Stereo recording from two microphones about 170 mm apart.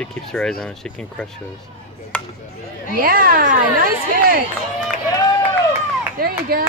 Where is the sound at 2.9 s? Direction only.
60° right (ahead or behind).